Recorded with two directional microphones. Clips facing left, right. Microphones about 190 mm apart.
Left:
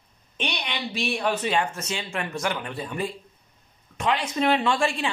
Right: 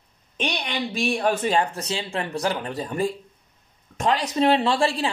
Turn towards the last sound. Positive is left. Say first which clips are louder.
# right 2 dB
turn(degrees=-35)  # may be behind; listen again after turning